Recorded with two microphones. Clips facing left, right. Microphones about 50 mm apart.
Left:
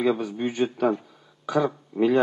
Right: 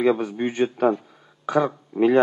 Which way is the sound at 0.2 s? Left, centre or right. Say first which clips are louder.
Right 2 dB; right.